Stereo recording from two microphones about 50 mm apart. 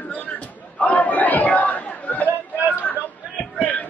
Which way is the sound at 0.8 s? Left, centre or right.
Left.